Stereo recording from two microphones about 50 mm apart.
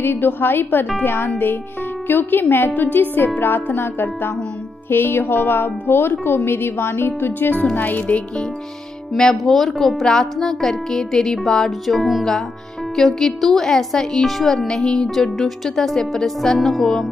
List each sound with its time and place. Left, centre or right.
0.0 s speech: left
4.8 s music: left
5.2 s speech: left
7.7 s music: left
9.1 s speech: centre
11.8 s music: centre
12.9 s speech: centre